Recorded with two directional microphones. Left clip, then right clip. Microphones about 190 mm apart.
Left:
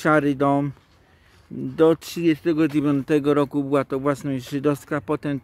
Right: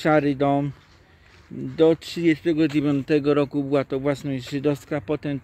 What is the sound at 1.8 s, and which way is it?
A man's voice, 30° left (ahead or behind).